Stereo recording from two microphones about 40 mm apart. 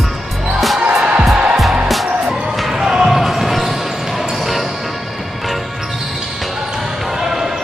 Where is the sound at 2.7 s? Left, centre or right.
Centre.